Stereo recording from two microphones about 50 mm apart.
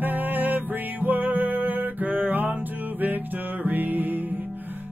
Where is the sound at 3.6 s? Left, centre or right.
Right.